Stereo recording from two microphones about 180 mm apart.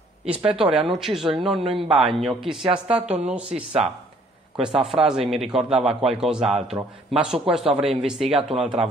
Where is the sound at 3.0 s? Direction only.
40° right (ahead or behind).